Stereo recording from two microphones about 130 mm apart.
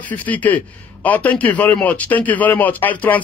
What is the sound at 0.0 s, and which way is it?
Speech, 10° left (ahead or behind).